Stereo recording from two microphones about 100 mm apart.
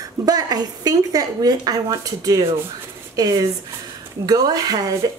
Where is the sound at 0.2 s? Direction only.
40° right (ahead or behind).